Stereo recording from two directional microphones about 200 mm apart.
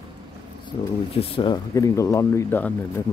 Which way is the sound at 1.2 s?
25° left (ahead or behind).